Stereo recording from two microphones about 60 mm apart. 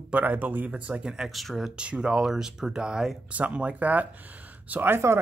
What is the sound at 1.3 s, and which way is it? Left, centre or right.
Speech, centre.